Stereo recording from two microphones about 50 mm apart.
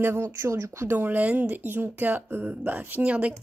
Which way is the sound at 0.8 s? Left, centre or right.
Right.